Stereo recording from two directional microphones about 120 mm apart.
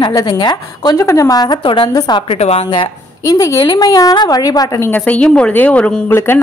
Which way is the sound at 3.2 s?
30° left (ahead or behind).